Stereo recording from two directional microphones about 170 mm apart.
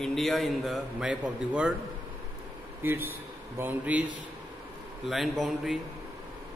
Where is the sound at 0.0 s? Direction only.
Centre (ahead or behind).